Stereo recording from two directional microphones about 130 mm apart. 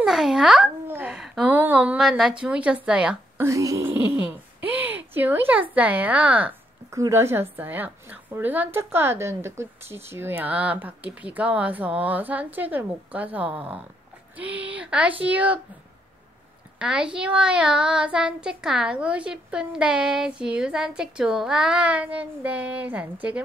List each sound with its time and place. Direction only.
0.0 s a child's voice: 5° right (ahead or behind)
0.8 s a sound: 15° right (ahead or behind)
1.1 s a sound: 5° right (ahead or behind)
1.5 s a woman's voice: 15° right (ahead or behind)
3.4 s speech: 25° right (ahead or behind)
6.9 s a woman's voice: 20° right (ahead or behind)
16.7 s a woman's voice: 5° right (ahead or behind)